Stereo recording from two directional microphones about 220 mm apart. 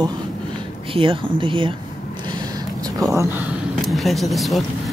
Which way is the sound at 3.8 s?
Centre (ahead or behind).